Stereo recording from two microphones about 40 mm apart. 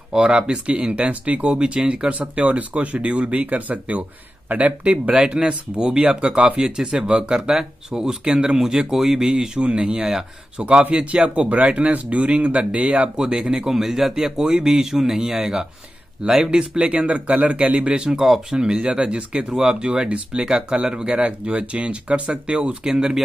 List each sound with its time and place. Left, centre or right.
0.1 s speech: centre
10.9 s speech: right
19.5 s speech: centre
19.8 s speech: right